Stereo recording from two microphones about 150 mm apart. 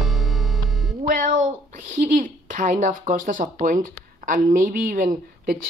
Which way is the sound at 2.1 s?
55° right (ahead or behind).